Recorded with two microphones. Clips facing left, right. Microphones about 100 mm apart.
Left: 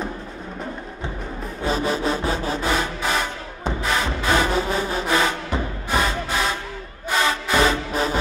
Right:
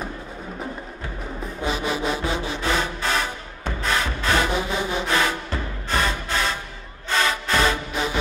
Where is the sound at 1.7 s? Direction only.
35° left (ahead or behind).